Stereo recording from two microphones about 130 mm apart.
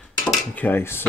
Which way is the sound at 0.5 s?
15° left (ahead or behind).